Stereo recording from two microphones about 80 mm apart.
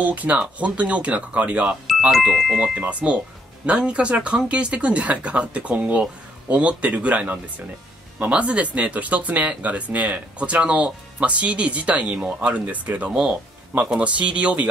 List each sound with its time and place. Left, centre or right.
0.0 s speech: centre